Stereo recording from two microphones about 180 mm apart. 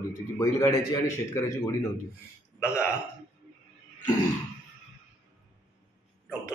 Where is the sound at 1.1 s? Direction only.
15° left (ahead or behind).